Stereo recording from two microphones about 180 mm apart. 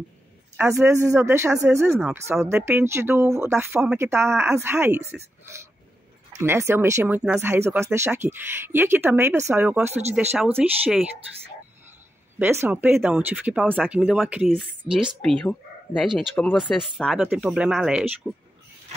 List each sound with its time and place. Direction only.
0.6 s speech: 15° right (ahead or behind)
1.9 s speech: 5° right (ahead or behind)
6.3 s speech: 15° right (ahead or behind)
12.4 s speech: 15° right (ahead or behind)